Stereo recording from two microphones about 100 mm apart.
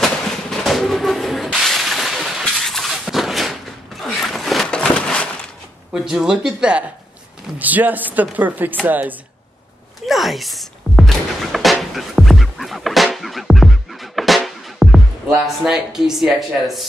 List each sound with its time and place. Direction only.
0.0 s a sound: centre (ahead or behind)
6.0 s speech: 5° right (ahead or behind)
10.0 s music: centre (ahead or behind)